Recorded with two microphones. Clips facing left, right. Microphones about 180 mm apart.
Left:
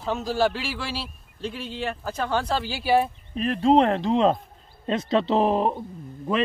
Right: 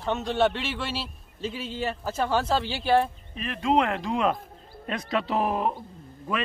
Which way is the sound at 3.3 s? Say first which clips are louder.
Left 5 dB; 40° left (ahead or behind).